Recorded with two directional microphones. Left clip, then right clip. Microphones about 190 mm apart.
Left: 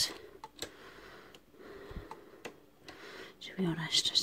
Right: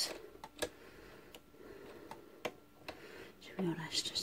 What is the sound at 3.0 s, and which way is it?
Whispering, 40° left (ahead or behind).